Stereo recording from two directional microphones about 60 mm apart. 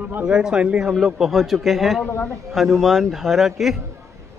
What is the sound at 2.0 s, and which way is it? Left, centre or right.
Speech, left.